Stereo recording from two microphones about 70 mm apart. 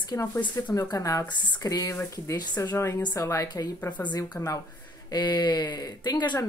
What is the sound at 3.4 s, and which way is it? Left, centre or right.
Speech, left.